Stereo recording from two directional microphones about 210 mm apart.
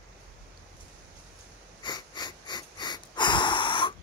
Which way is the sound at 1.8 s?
20° left (ahead or behind).